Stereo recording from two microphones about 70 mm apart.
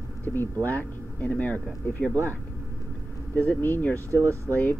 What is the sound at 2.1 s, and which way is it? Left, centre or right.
Speech, right.